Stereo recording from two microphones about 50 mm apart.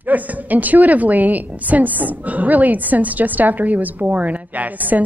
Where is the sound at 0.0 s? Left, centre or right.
Right.